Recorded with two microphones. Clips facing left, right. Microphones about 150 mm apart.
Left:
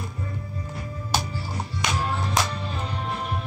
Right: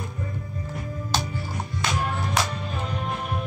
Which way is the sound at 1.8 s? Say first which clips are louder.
Even; 15° left (ahead or behind).